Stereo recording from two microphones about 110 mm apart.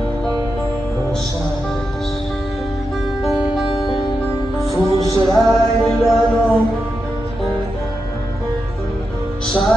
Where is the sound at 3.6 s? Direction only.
55° left (ahead or behind).